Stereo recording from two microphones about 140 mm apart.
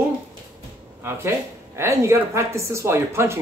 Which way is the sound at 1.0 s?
20° right (ahead or behind).